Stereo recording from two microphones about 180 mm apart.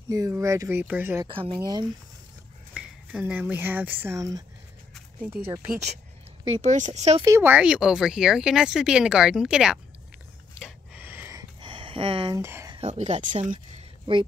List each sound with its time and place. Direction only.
0.1 s speech: 20° right (ahead or behind)
1.2 s speech: 30° right (ahead or behind)
2.7 s speech: 5° right (ahead or behind)
6.4 s speech: 40° right (ahead or behind)
7.2 s speech: 15° right (ahead or behind)
10.6 s a sound: 5° right (ahead or behind)
11.6 s a sound: 30° right (ahead or behind)
12.4 s speech: 15° right (ahead or behind)
12.7 s speech: 40° right (ahead or behind)